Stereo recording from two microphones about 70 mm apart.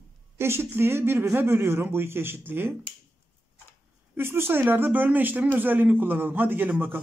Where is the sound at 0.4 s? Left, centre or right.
Right.